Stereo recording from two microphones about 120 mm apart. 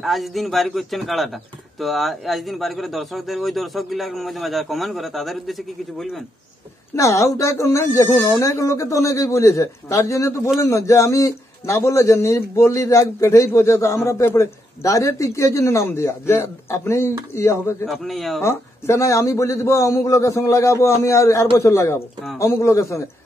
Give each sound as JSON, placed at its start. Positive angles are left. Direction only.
{"t": 0.0, "sound": "a man's voice", "side_deg": 0}
{"t": 7.0, "sound": "a man's voice", "side_deg": 25}
{"t": 17.8, "sound": "a man's voice", "side_deg": 0}
{"t": 18.4, "sound": "a man's voice", "side_deg": 20}